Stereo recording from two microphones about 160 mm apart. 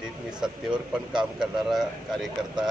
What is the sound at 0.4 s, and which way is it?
A man's voice, 5° right (ahead or behind).